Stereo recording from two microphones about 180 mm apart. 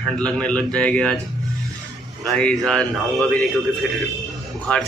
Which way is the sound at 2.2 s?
5° left (ahead or behind).